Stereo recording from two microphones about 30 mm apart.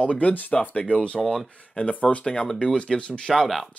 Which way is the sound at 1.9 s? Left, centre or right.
Left.